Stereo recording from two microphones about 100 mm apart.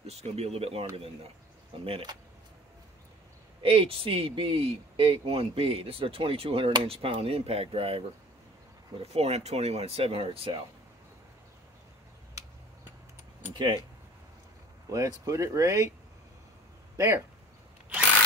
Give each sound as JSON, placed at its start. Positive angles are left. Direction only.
{"t": 0.0, "sound": "speech", "side_deg": -90}
{"t": 3.6, "sound": "a man's voice", "side_deg": -65}
{"t": 9.1, "sound": "speech", "side_deg": -90}
{"t": 13.5, "sound": "keys jangling", "side_deg": -50}
{"t": 14.9, "sound": "speech", "side_deg": -35}
{"t": 16.9, "sound": "speech", "side_deg": -25}